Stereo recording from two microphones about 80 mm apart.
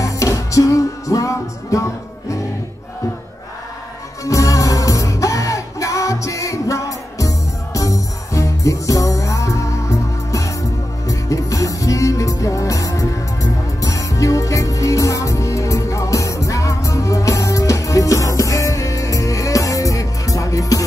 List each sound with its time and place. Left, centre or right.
0.0 s music: left
4.2 s music: left